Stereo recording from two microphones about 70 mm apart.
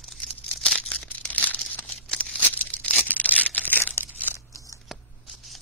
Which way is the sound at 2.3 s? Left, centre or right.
Left.